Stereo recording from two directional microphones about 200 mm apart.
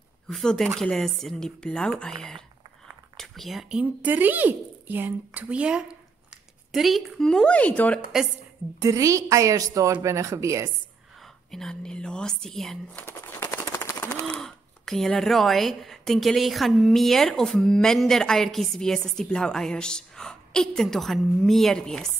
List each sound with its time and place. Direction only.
0.3 s speech: centre (ahead or behind)
8.8 s a woman's voice: 15° right (ahead or behind)
11.5 s speech: 5° left (ahead or behind)
14.4 s speech: centre (ahead or behind)